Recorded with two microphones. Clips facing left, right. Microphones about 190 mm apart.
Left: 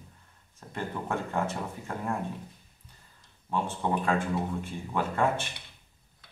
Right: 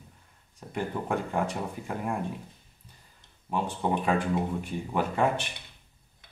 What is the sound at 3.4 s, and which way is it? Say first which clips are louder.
A man's voice: right 1 dB; 15° right (ahead or behind).